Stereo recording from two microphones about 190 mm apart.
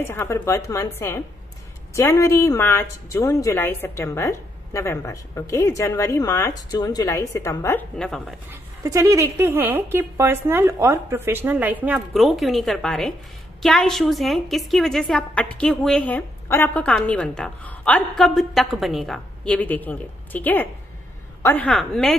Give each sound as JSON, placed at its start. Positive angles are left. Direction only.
{"t": 0.0, "sound": "a woman's voice", "side_deg": 10}
{"t": 8.5, "sound": "a woman's voice", "side_deg": -15}